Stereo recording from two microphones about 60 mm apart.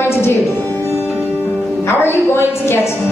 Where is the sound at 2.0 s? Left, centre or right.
Left.